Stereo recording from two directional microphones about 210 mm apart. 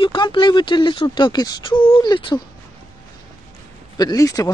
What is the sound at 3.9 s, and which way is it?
Speech, 15° left (ahead or behind).